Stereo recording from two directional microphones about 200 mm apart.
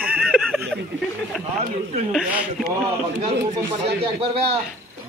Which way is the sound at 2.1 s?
Centre (ahead or behind).